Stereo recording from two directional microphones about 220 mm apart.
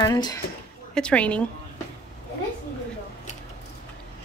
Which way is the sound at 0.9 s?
5° left (ahead or behind).